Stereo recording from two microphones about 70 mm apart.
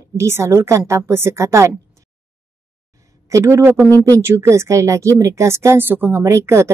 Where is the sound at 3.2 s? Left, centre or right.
Right.